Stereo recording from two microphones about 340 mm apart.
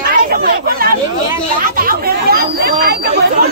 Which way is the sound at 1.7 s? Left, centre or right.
Right.